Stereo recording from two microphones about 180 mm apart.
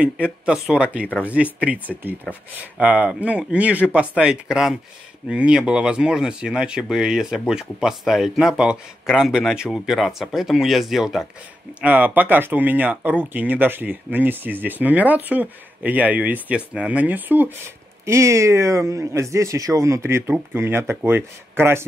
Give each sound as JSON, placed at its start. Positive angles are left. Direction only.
{"t": 0.0, "sound": "speech", "side_deg": -5}